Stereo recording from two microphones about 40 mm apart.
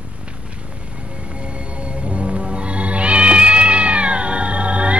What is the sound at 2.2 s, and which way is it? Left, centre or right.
Cat, right.